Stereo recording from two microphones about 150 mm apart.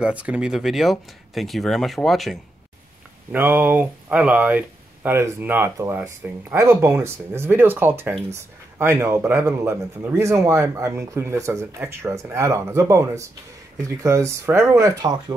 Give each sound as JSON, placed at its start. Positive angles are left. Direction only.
{"t": 0.0, "sound": "speech", "side_deg": -10}
{"t": 3.3, "sound": "speech", "side_deg": -15}